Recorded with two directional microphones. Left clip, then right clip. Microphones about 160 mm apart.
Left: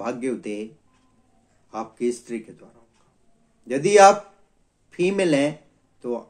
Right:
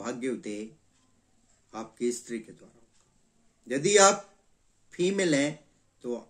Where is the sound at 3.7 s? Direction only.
40° left (ahead or behind).